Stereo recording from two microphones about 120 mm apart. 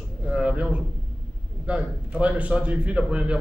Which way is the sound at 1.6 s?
10° right (ahead or behind).